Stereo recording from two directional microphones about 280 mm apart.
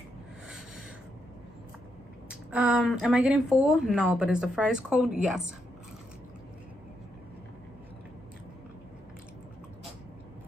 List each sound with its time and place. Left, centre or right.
2.2 s a woman's voice: centre